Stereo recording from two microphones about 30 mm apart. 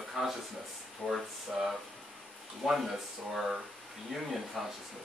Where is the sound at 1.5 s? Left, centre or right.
Centre.